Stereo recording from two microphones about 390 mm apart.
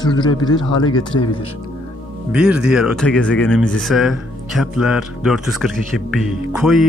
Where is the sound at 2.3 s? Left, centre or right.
Centre.